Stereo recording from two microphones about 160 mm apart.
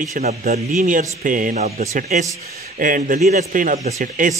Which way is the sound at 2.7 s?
60° right (ahead or behind).